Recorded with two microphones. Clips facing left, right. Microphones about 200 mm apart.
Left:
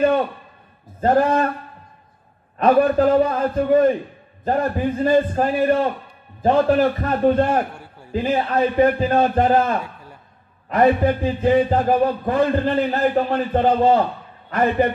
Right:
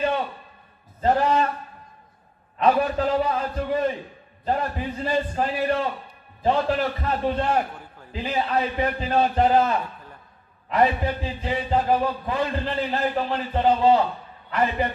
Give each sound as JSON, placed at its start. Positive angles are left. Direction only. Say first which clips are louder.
{"t": 1.0, "sound": "a man's voice", "louder": "left 4 dB", "side_deg": 55}
{"t": 2.6, "sound": "a man's voice", "louder": "left 6 dB", "side_deg": 55}